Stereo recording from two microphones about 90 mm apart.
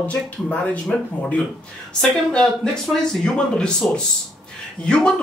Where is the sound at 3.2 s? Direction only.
10° left (ahead or behind).